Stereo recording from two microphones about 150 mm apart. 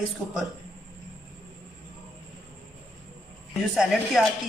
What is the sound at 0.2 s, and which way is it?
Speech, 10° right (ahead or behind).